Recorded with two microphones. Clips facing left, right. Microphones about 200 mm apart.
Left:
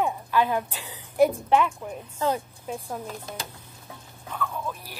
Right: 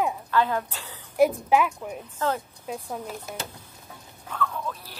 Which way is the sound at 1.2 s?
5° right (ahead or behind).